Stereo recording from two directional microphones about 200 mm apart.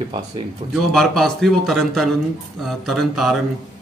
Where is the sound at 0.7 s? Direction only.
Centre (ahead or behind).